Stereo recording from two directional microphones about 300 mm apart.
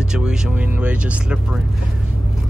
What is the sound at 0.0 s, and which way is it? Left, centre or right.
Speech, centre.